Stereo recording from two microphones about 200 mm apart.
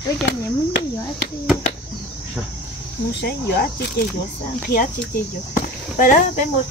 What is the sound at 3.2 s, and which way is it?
Speech, 55° left (ahead or behind).